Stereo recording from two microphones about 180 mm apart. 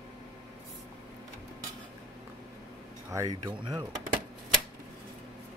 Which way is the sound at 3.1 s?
25° right (ahead or behind).